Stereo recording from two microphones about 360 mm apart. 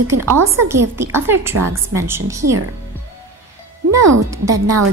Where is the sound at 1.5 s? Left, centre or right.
Right.